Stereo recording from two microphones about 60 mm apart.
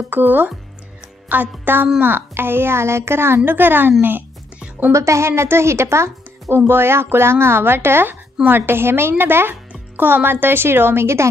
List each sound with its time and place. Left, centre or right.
0.1 s speech: right
4.6 s music: right
4.9 s a woman's voice: right